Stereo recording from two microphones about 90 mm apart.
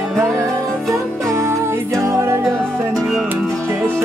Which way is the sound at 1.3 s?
30° right (ahead or behind).